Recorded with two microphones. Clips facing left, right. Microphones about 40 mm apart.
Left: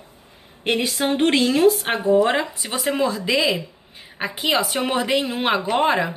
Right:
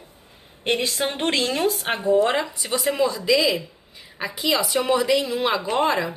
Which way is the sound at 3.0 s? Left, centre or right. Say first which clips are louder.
Right 1 dB; left.